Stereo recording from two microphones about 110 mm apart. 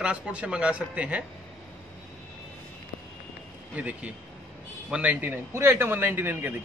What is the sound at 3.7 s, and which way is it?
A man's voice, 15° right (ahead or behind).